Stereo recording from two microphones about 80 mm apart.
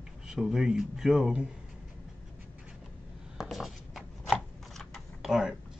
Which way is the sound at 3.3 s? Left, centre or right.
Centre.